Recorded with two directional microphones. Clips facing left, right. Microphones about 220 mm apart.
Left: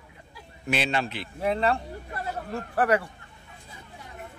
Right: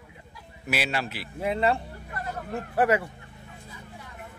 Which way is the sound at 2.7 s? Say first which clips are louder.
Right 1 dB; 25° right (ahead or behind).